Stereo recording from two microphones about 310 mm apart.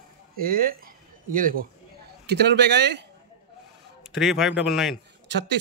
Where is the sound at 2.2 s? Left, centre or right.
Right.